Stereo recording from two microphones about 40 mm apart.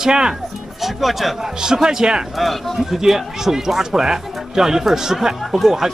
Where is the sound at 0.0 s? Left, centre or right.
Centre.